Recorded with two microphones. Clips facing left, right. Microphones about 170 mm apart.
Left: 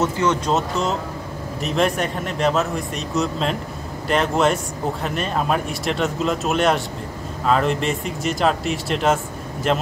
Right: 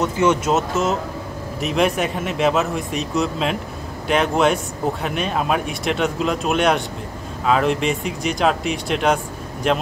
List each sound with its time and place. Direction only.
0.2 s speech: 5° right (ahead or behind)